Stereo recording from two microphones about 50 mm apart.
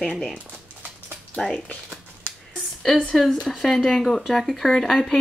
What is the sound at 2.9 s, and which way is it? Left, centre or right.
Speech, centre.